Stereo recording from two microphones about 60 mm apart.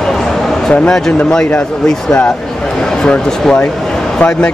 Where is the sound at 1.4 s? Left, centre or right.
Centre.